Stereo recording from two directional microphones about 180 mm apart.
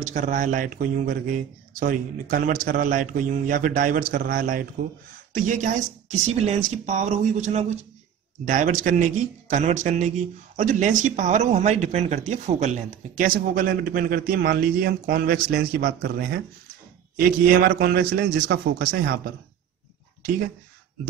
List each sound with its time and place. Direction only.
0.0 s speech: 45° right (ahead or behind)
17.5 s a man's voice: 55° right (ahead or behind)